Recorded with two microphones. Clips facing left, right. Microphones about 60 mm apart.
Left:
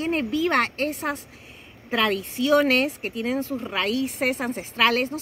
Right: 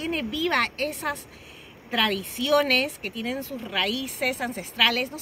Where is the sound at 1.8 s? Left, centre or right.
Left.